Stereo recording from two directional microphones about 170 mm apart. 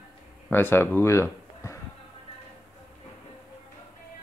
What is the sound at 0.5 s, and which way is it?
Speech, 15° left (ahead or behind).